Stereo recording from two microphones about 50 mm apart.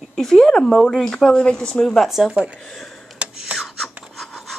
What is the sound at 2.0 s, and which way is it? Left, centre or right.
Speech, centre.